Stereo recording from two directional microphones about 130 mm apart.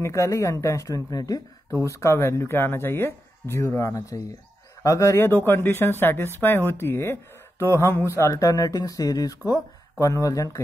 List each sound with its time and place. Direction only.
0.0 s speech: 20° left (ahead or behind)